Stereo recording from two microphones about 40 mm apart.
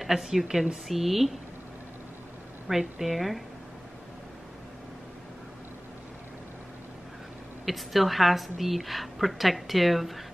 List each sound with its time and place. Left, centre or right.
0.1 s a woman's voice: centre
2.7 s a woman's voice: centre
7.6 s a woman's voice: centre